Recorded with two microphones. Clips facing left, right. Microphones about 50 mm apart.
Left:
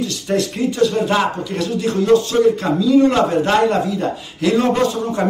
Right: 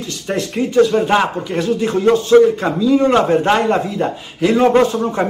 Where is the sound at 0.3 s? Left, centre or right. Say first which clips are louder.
Right 1 dB; centre.